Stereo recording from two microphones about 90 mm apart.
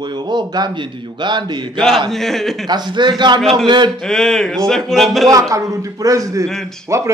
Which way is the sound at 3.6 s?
60° right (ahead or behind).